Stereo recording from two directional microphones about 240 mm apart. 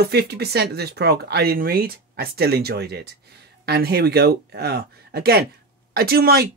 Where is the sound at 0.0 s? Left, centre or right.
Right.